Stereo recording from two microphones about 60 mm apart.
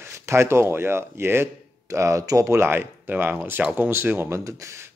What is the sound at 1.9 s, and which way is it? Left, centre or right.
Speech, right.